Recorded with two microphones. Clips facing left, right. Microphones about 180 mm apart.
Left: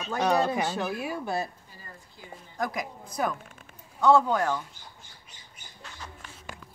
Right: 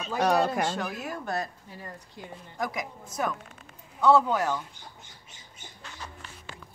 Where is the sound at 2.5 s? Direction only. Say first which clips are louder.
Left 1 dB; centre (ahead or behind).